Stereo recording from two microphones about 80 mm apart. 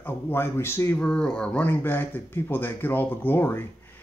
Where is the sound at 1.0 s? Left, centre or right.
Centre.